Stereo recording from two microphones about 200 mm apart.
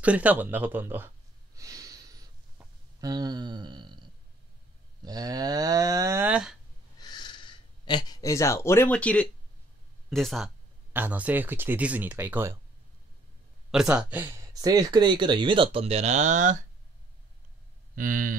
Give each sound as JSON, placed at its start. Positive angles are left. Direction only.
{"t": 0.0, "sound": "a sound", "side_deg": -5}
{"t": 5.0, "sound": "speech", "side_deg": -20}
{"t": 7.0, "sound": "a sound", "side_deg": 20}
{"t": 10.0, "sound": "speech", "side_deg": 0}
{"t": 13.7, "sound": "speech", "side_deg": -5}
{"t": 17.9, "sound": "speech", "side_deg": -45}